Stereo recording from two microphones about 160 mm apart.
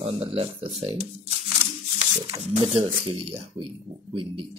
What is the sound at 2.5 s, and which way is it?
Speech, 40° right (ahead or behind).